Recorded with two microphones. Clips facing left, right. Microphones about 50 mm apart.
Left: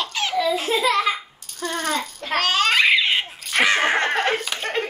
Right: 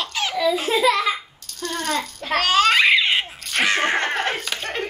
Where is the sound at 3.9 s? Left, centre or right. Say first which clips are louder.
Left 2 dB; centre.